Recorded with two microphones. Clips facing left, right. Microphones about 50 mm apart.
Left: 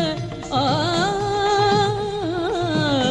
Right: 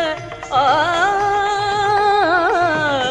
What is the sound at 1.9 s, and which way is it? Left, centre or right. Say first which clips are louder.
Music: right 10 dB; right.